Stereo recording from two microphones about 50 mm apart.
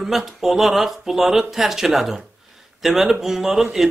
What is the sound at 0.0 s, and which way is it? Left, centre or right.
Speech, centre.